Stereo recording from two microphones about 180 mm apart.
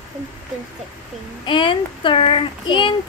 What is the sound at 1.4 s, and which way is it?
Speech, 25° left (ahead or behind).